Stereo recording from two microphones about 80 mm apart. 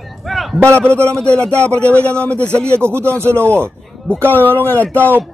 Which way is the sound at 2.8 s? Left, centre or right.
Right.